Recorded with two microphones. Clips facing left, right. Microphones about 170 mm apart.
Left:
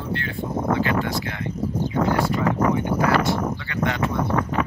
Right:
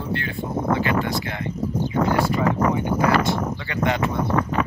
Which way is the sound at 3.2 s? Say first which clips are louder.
Even; 20° right (ahead or behind).